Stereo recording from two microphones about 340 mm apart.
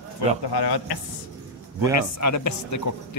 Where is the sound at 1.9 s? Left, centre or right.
Left.